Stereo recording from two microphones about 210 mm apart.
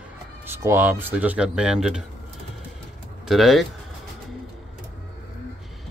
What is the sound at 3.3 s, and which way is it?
Speech, centre (ahead or behind).